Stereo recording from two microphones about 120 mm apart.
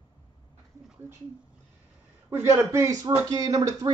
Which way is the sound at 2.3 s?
20° right (ahead or behind).